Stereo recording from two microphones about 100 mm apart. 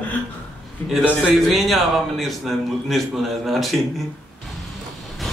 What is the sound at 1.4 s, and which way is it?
Speech, centre (ahead or behind).